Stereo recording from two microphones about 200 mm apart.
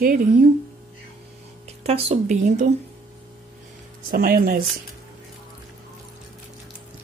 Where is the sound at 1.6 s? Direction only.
30° right (ahead or behind).